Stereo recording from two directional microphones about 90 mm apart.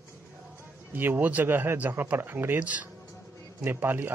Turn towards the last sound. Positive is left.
turn(degrees=-20)  # may be behind; listen again after turning